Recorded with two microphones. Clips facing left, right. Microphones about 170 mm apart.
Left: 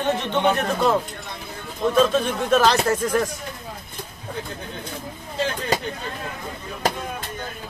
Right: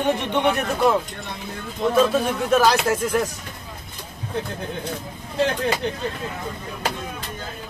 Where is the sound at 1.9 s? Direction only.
10° right (ahead or behind).